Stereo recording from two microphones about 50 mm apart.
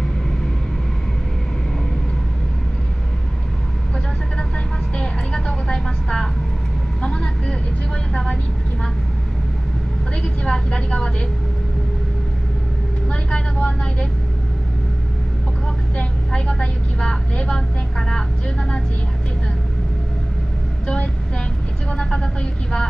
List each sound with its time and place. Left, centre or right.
4.9 s vehicle: centre
10.2 s vehicle: centre
13.1 s vehicle: left
16.3 s vehicle: centre
20.8 s vehicle: left